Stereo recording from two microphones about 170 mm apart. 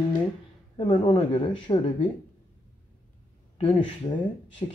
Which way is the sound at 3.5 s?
30° left (ahead or behind).